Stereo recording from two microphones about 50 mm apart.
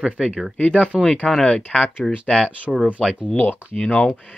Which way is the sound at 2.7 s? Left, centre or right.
Centre.